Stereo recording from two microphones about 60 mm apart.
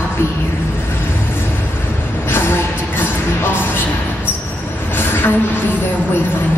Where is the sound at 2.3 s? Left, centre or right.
Left.